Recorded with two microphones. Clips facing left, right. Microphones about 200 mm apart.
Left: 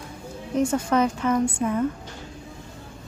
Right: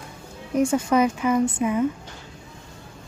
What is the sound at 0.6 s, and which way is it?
A woman's voice, 10° right (ahead or behind).